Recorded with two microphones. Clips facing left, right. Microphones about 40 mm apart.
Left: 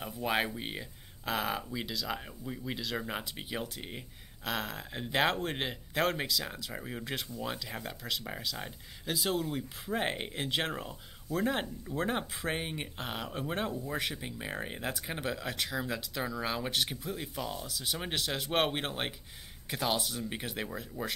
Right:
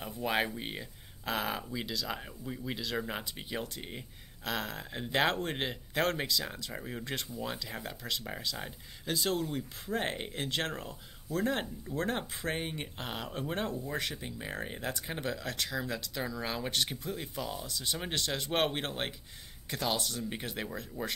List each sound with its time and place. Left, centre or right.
0.0 s speech: centre